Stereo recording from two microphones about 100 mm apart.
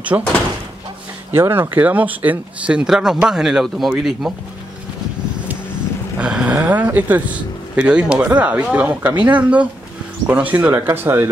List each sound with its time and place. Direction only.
0.1 s speech: 30° right (ahead or behind)
1.3 s speech: 25° right (ahead or behind); by 4.3 s 5° right (ahead or behind)
6.1 s speech: 10° right (ahead or behind)